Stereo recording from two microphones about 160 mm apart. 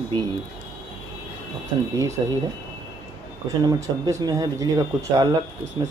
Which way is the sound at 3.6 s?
20° right (ahead or behind).